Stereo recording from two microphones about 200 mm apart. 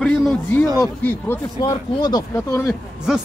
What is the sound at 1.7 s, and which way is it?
Speech, 20° left (ahead or behind).